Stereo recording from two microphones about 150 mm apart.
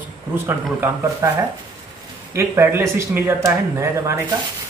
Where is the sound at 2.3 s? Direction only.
15° right (ahead or behind).